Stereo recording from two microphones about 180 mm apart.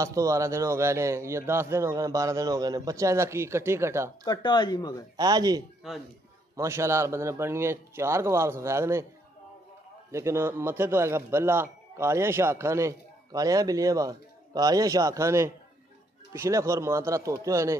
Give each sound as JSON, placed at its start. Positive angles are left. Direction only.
{"t": 0.0, "sound": "speech", "side_deg": -15}
{"t": 4.2, "sound": "speech", "side_deg": 25}
{"t": 5.1, "sound": "speech", "side_deg": -20}
{"t": 10.1, "sound": "speech", "side_deg": -15}